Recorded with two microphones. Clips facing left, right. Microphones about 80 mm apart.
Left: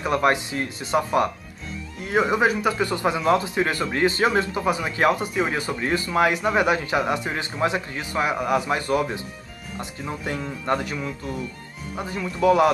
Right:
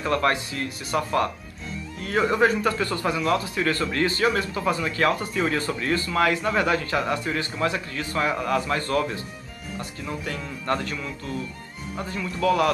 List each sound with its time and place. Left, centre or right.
0.0 s speech: centre
4.6 s speech: centre